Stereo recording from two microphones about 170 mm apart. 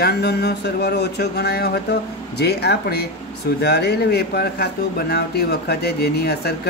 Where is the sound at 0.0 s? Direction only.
70° left (ahead or behind).